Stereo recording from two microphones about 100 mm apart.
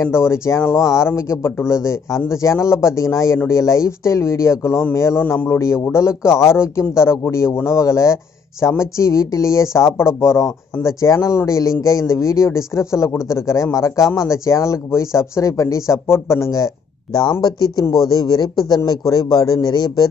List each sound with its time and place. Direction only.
0.0 s speech: 25° left (ahead or behind); by 20.1 s 45° left (ahead or behind)